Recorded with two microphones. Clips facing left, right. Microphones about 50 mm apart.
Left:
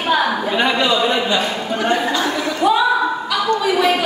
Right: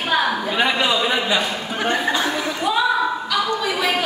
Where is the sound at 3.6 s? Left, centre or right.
Centre.